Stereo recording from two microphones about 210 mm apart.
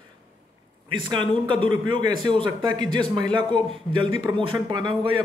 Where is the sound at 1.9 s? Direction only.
20° right (ahead or behind).